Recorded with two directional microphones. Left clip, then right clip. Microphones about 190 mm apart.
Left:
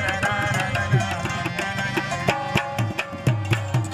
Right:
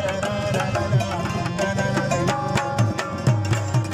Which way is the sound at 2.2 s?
5° left (ahead or behind).